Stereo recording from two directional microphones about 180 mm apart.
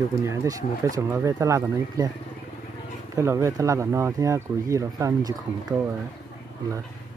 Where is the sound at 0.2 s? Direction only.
15° right (ahead or behind).